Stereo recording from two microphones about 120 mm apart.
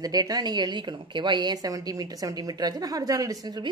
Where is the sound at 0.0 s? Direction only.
30° right (ahead or behind).